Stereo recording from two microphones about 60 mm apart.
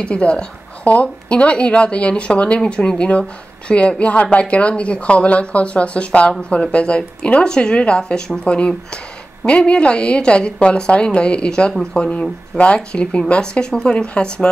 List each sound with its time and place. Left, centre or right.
0.0 s speech: centre